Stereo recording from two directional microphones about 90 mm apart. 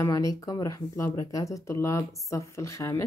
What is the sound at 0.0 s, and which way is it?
A woman's voice, 35° left (ahead or behind).